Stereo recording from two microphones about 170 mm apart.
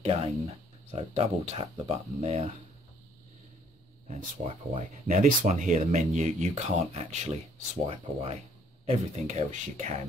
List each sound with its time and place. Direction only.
0.0 s speech: 35° right (ahead or behind)
4.1 s speech: 40° right (ahead or behind)